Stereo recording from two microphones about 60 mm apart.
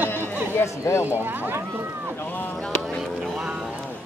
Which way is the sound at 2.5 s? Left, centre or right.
Centre.